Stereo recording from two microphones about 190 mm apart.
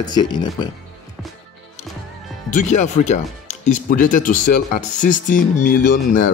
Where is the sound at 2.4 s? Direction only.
40° left (ahead or behind).